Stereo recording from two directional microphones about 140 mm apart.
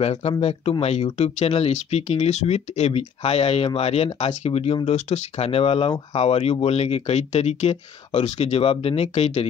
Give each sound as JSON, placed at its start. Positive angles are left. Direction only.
{"t": 0.0, "sound": "speech", "side_deg": 45}